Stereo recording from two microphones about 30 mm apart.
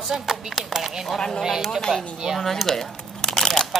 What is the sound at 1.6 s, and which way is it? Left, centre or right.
Speech, centre.